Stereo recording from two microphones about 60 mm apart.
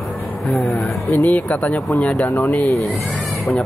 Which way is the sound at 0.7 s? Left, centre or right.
Centre.